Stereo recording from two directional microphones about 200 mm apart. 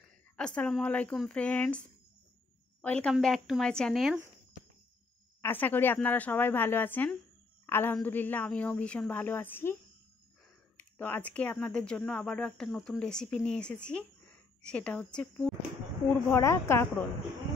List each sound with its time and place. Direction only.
0.4 s speech: 5° left (ahead or behind)
5.4 s a woman's voice: 10° left (ahead or behind)
10.8 s a woman's voice: 10° left (ahead or behind)